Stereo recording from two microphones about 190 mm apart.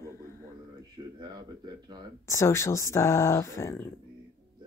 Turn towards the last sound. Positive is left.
turn(degrees=15)  # may be behind; listen again after turning